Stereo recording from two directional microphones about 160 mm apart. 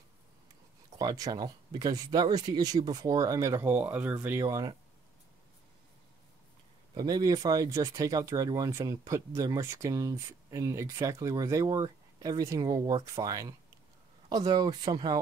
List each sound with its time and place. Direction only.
0.9 s speech: 25° right (ahead or behind)
7.0 s speech: 25° right (ahead or behind)